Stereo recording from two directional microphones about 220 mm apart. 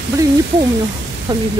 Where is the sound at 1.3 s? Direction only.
20° right (ahead or behind).